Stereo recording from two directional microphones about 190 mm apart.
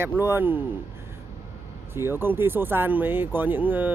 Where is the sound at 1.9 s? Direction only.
10° right (ahead or behind).